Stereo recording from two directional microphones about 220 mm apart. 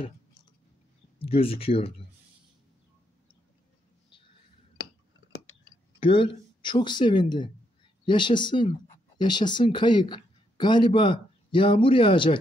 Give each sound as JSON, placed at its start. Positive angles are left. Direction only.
{"t": 1.2, "sound": "speech", "side_deg": 25}
{"t": 5.9, "sound": "speech", "side_deg": 25}